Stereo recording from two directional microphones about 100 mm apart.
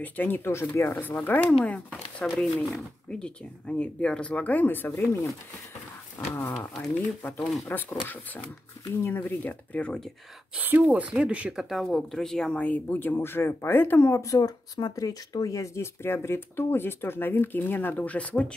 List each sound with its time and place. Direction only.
0.0 s speech: 20° left (ahead or behind)
7.3 s speech: centre (ahead or behind)
9.0 s speech: 20° left (ahead or behind)
10.5 s speech: 15° right (ahead or behind)
11.7 s speech: centre (ahead or behind)